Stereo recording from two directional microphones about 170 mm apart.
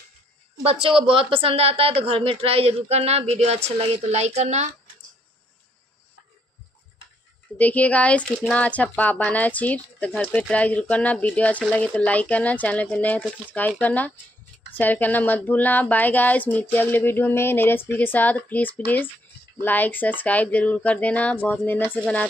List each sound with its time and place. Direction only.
0.7 s speech: 35° right (ahead or behind)
7.5 s speech: 10° left (ahead or behind)